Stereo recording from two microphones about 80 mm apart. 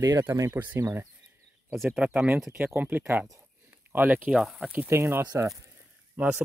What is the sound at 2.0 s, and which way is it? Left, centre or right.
Speech, centre.